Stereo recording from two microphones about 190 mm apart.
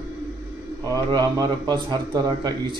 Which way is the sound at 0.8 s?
20° right (ahead or behind).